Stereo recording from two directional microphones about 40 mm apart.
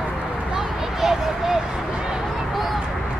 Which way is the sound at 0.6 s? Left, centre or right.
Centre.